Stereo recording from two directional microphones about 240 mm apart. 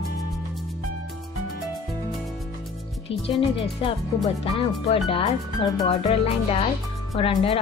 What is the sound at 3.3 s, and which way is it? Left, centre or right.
Speech, left.